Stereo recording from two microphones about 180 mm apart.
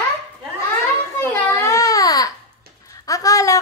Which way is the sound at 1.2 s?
10° left (ahead or behind).